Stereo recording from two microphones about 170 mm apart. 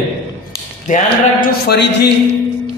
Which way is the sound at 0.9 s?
45° left (ahead or behind).